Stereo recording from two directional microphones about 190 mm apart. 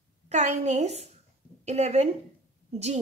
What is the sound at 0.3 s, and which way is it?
A woman's voice, 40° right (ahead or behind).